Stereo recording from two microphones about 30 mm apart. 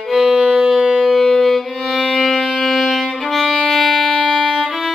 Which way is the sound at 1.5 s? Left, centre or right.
Centre.